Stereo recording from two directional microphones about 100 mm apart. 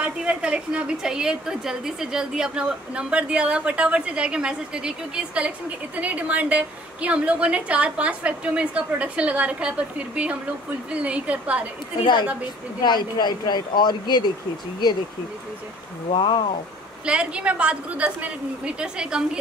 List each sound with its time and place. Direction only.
0.0 s a woman's voice: 10° right (ahead or behind)
12.0 s speech: 50° left (ahead or behind)
16.1 s speech: 60° left (ahead or behind)
17.0 s a woman's voice: 10° right (ahead or behind)